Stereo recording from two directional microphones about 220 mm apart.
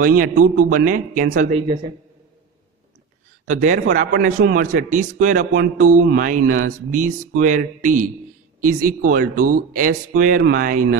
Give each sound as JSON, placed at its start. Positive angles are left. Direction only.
{"t": 0.0, "sound": "speech", "side_deg": -40}
{"t": 3.4, "sound": "speech", "side_deg": -35}